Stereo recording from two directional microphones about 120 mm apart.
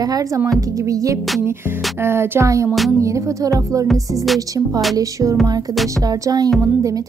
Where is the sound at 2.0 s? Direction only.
20° right (ahead or behind).